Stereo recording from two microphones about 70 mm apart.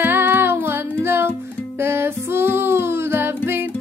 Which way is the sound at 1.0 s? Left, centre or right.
Right.